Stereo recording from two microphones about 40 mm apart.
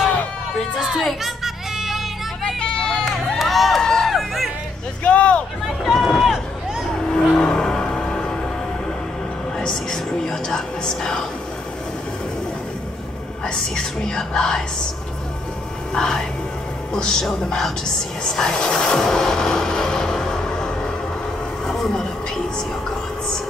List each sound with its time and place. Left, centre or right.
0.7 s speech: centre
1.2 s music: centre
2.6 s children playing: centre
3.3 s crowd: centre
3.8 s music: centre
4.1 s music: centre
5.0 s speech: left
5.9 s speech: centre
7.3 s vehicle: centre
9.6 s a woman's voice: centre
13.7 s speech: centre
15.9 s a woman's voice: centre
18.2 s music: centre
21.6 s a sound: centre